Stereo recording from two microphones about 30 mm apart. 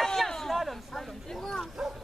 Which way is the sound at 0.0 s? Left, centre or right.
Centre.